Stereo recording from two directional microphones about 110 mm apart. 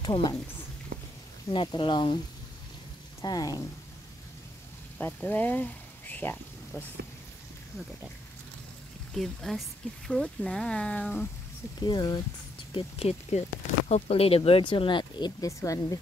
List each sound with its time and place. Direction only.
0.0 s a woman's voice: 40° left (ahead or behind)
1.5 s speech: 45° left (ahead or behind)
3.2 s speech: 35° left (ahead or behind)
5.0 s speech: 15° left (ahead or behind)
9.1 s speech: 5° left (ahead or behind)
11.8 s speech: 40° left (ahead or behind)
12.7 s speech: 75° left (ahead or behind); by 15.3 s 45° left (ahead or behind)
15.4 s speech: 30° left (ahead or behind)